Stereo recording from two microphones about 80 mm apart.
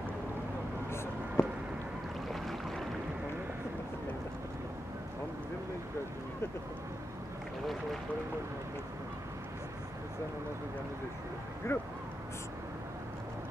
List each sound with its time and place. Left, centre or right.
1.4 s a sound: left
2.2 s boat: centre
11.7 s speech: left